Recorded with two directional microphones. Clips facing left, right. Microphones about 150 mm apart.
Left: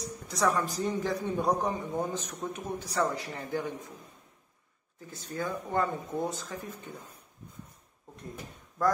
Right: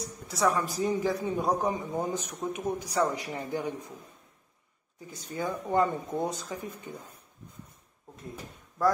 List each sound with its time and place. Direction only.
0.3 s a man's voice: 5° right (ahead or behind)
5.0 s a man's voice: 15° right (ahead or behind)